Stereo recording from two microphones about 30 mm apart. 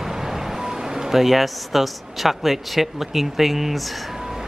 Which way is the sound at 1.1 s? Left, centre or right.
Centre.